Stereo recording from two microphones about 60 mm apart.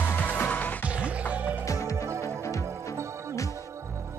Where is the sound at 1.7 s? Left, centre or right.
Left.